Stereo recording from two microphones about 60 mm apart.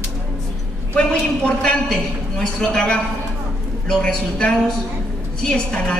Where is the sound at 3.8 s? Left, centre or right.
Centre.